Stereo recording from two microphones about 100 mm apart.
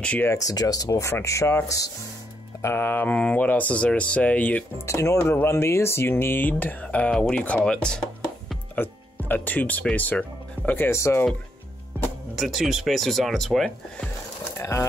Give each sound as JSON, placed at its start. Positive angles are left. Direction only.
{"t": 0.0, "sound": "speech", "side_deg": 15}
{"t": 0.3, "sound": "speech", "side_deg": 35}
{"t": 2.6, "sound": "speech", "side_deg": 20}
{"t": 4.8, "sound": "speech", "side_deg": 30}
{"t": 8.7, "sound": "speech", "side_deg": 20}
{"t": 10.9, "sound": "speech", "side_deg": 25}
{"t": 12.4, "sound": "speech", "side_deg": 0}
{"t": 14.6, "sound": "speech", "side_deg": 30}